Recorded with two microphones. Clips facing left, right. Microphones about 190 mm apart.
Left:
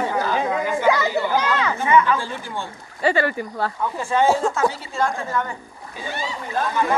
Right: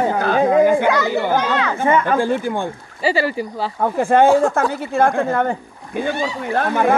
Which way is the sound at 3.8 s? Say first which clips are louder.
Right 7 dB; 55° right (ahead or behind).